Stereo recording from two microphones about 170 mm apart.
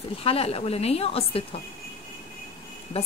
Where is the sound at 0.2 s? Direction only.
35° left (ahead or behind).